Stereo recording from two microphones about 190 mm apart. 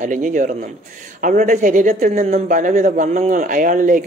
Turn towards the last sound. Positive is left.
turn(degrees=-45)  # may be behind; listen again after turning